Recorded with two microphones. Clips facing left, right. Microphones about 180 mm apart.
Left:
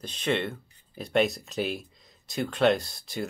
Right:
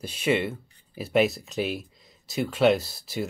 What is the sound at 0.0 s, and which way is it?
Speech, 10° right (ahead or behind).